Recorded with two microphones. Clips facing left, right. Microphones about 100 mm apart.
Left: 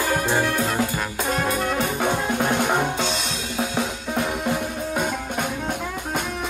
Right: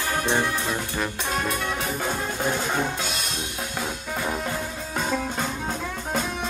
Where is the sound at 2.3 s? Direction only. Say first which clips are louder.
Left 4 dB; 60° left (ahead or behind).